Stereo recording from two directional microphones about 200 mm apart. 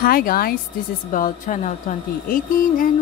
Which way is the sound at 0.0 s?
45° left (ahead or behind).